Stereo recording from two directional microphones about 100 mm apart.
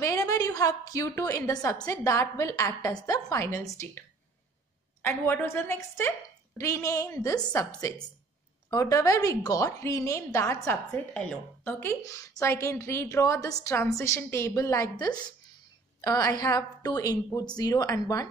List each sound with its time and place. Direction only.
0.0 s a woman's voice: 35° left (ahead or behind)
5.0 s a woman's voice: 20° left (ahead or behind)
11.1 s speech: 10° left (ahead or behind)
11.8 s a woman's voice: 30° left (ahead or behind)